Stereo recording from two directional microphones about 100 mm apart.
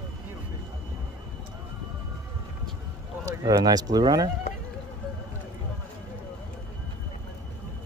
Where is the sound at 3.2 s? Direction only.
40° right (ahead or behind).